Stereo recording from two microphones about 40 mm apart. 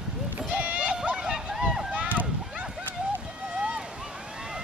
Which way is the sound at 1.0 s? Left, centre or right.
Centre.